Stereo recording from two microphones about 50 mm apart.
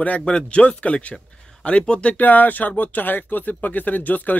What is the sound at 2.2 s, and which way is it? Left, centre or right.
Speech, left.